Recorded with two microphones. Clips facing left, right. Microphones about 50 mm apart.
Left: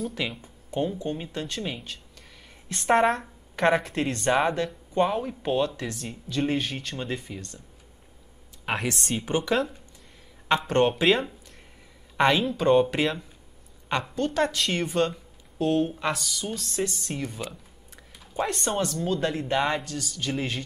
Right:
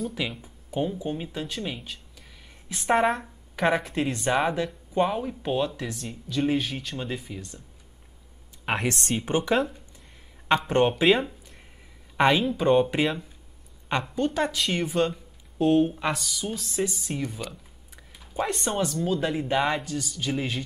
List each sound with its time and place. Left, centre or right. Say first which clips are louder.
0.0 s speech: even; centre
8.7 s speech: right 1 dB; centre
9.2 s a woman's voice: right 1 dB; right
10.8 s speech: even; centre